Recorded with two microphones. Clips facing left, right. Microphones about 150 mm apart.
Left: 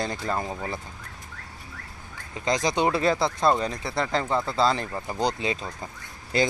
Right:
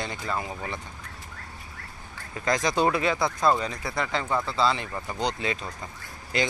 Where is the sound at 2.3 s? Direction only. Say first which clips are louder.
Even; 20° left (ahead or behind).